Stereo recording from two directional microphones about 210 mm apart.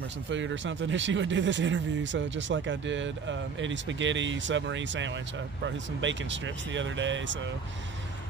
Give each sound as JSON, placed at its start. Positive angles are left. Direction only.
{"t": 0.3, "sound": "speech", "side_deg": -60}